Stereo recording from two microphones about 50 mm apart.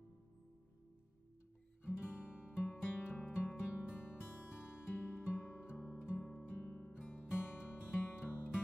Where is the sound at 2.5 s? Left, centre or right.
Left.